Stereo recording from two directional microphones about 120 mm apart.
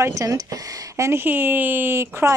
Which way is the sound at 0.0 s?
25° right (ahead or behind).